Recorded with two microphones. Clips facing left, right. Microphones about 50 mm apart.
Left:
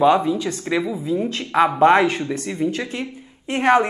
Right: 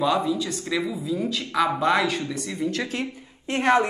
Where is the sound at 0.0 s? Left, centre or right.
Left.